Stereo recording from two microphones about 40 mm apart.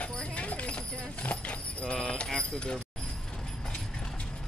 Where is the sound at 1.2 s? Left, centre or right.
Left.